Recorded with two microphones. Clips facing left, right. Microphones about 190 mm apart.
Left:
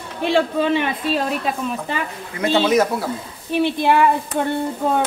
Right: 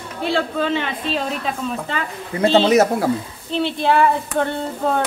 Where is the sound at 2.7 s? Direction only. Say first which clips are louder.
Right 2 dB; 45° right (ahead or behind).